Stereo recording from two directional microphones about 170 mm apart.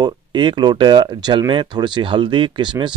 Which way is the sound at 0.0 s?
30° right (ahead or behind).